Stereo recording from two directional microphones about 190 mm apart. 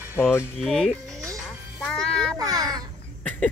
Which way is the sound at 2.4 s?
20° right (ahead or behind).